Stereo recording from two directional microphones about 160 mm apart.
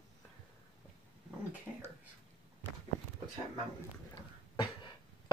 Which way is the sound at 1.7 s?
15° right (ahead or behind).